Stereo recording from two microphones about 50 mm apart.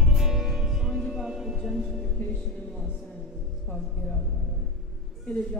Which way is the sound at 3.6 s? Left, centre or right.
Centre.